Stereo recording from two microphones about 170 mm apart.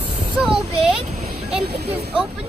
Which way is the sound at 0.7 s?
40° right (ahead or behind).